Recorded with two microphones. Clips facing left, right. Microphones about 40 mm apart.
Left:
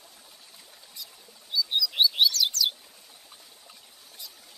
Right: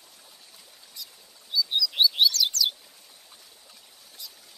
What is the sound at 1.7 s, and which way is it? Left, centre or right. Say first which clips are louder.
Chirp: even; centre.